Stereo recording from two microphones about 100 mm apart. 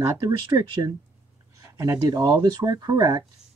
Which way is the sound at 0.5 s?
45° right (ahead or behind).